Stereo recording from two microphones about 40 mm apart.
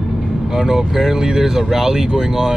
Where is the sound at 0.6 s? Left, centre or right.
Centre.